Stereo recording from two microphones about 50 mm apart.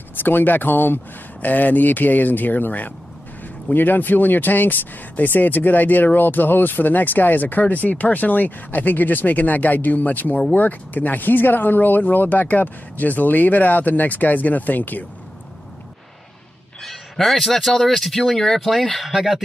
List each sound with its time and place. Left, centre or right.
0.1 s speech: left
16.8 s speech: centre